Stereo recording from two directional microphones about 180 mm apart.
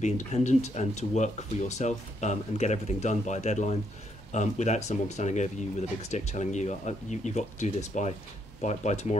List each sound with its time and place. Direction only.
0.0 s speech: 40° left (ahead or behind)